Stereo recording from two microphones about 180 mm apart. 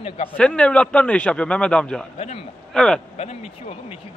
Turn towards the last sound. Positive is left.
turn(degrees=35)  # may be behind; listen again after turning